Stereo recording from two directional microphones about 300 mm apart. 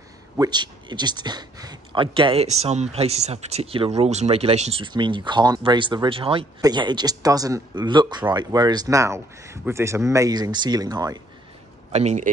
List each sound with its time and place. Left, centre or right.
0.4 s speech: centre